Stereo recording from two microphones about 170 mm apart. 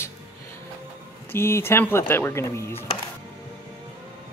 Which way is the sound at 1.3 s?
15° left (ahead or behind).